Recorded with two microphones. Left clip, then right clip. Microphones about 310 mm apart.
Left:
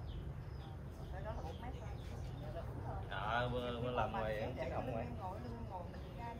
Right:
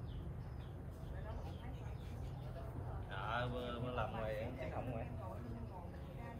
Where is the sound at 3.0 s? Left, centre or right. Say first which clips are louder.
Left 3 dB; left.